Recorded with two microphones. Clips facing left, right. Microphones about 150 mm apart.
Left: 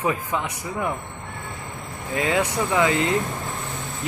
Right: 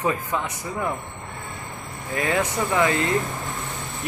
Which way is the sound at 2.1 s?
15° left (ahead or behind).